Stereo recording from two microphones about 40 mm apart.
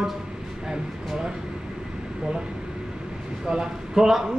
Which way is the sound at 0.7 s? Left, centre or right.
Centre.